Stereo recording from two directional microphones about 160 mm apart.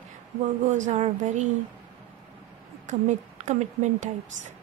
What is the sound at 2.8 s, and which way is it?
A woman's voice, 50° right (ahead or behind).